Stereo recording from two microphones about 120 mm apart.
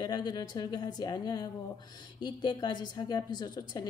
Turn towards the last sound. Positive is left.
turn(degrees=35)  # may be behind; listen again after turning